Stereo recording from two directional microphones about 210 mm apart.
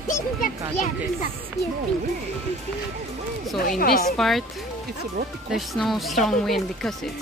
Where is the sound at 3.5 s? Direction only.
45° left (ahead or behind).